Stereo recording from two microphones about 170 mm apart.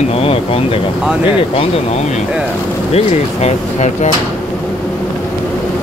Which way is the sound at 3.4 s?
40° left (ahead or behind).